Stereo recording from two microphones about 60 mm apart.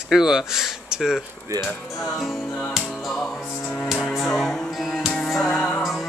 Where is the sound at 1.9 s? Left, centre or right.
Centre.